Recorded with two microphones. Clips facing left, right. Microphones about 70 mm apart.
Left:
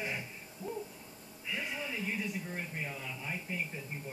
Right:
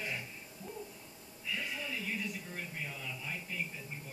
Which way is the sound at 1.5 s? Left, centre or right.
Centre.